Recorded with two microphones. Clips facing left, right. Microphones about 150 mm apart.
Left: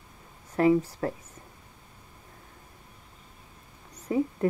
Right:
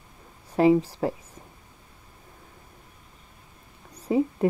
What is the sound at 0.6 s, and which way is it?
Speech, 20° right (ahead or behind).